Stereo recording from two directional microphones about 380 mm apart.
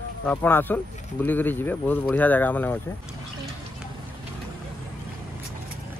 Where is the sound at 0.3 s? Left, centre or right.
Centre.